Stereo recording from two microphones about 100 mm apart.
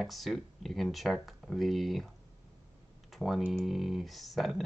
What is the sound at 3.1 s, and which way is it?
Speech, centre (ahead or behind).